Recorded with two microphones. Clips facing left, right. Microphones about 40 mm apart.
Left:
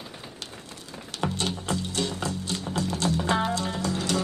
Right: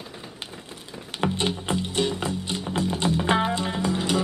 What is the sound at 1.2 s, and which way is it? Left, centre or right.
Music, right.